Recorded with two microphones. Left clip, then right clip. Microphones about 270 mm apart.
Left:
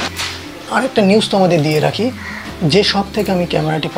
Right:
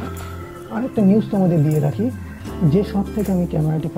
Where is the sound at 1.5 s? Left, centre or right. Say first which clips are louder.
Left 7 dB; centre.